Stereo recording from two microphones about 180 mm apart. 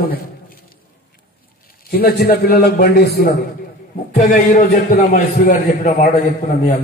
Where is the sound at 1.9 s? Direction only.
60° left (ahead or behind).